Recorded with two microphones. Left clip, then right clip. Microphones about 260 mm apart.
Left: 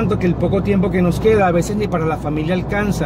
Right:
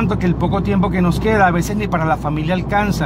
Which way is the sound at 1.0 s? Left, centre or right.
Right.